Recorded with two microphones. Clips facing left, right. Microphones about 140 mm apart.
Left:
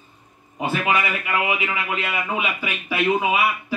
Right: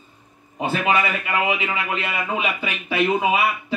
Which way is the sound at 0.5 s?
25° right (ahead or behind).